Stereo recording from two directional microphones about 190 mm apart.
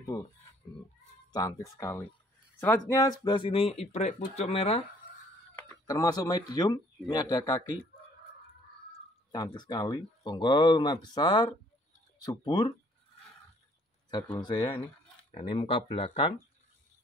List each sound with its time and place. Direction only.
0.0 s speech: 20° left (ahead or behind)
1.8 s speech: 15° left (ahead or behind); by 4.8 s 30° left (ahead or behind)
5.9 s speech: 20° left (ahead or behind)
9.3 s speech: 20° left (ahead or behind)
14.4 s speech: 25° left (ahead or behind)